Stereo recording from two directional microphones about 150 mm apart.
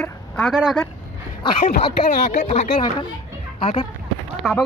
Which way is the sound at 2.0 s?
70° left (ahead or behind).